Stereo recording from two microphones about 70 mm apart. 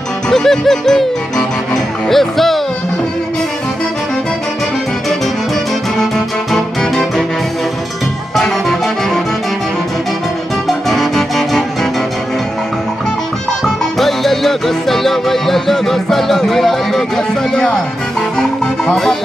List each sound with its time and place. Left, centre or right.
0.3 s music: centre
5.9 s music: centre
8.4 s music: centre
10.9 s music: centre
13.9 s music: centre